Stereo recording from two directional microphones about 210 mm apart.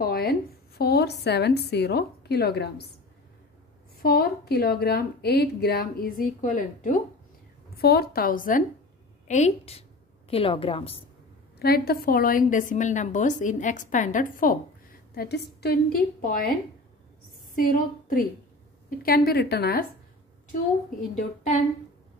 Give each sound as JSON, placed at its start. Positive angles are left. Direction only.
{"t": 0.0, "sound": "a woman's voice", "side_deg": 45}
{"t": 4.0, "sound": "a woman's voice", "side_deg": 45}
{"t": 11.6, "sound": "a woman's voice", "side_deg": 45}
{"t": 15.1, "sound": "a woman's voice", "side_deg": 50}
{"t": 17.6, "sound": "a woman's voice", "side_deg": 40}
{"t": 21.1, "sound": "a woman's voice", "side_deg": 35}